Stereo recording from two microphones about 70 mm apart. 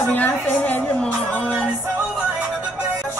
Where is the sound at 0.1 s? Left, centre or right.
Left.